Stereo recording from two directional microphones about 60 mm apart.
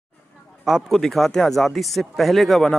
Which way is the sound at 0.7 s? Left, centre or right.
Centre.